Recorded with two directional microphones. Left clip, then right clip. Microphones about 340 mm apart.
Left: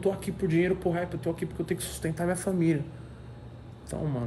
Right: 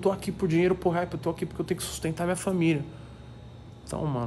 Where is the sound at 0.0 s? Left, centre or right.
Centre.